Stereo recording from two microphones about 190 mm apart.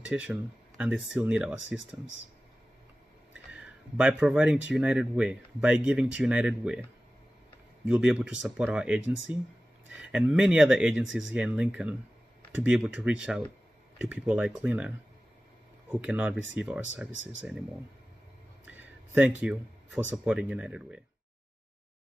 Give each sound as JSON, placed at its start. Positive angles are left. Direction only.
{"t": 0.0, "sound": "speech", "side_deg": -5}
{"t": 3.5, "sound": "speech", "side_deg": -5}
{"t": 7.8, "sound": "speech", "side_deg": -5}
{"t": 15.9, "sound": "speech", "side_deg": -5}
{"t": 17.1, "sound": "speech", "side_deg": -80}
{"t": 17.4, "sound": "speech", "side_deg": 0}
{"t": 18.7, "sound": "speech", "side_deg": -5}